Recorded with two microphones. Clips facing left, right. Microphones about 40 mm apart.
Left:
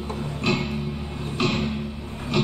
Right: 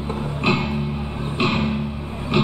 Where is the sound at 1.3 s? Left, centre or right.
Right.